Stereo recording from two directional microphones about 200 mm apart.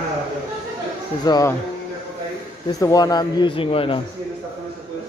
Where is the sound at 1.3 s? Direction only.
15° left (ahead or behind).